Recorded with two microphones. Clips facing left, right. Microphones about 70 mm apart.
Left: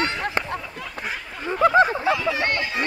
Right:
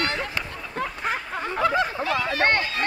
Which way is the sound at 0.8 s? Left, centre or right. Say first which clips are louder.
Right 4 dB; right.